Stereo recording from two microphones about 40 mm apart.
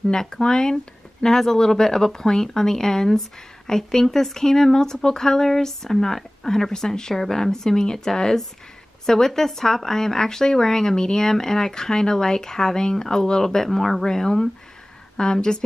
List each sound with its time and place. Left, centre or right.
0.1 s speech: centre